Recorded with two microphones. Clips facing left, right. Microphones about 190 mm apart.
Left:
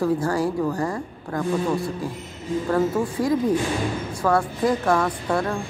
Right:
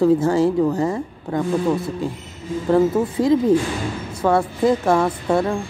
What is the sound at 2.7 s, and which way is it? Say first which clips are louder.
A woman's voice: right 6 dB; 25° right (ahead or behind).